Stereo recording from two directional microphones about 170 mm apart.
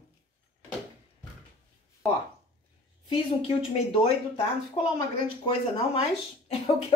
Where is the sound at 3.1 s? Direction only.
35° left (ahead or behind).